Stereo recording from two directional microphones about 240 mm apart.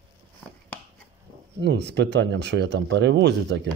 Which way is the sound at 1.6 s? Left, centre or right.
Right.